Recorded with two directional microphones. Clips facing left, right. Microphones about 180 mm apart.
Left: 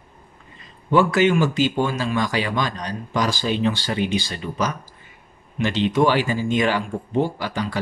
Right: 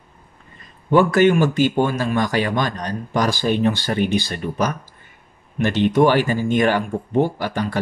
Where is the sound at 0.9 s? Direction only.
55° right (ahead or behind).